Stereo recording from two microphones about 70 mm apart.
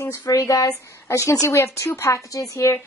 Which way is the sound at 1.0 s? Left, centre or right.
Left.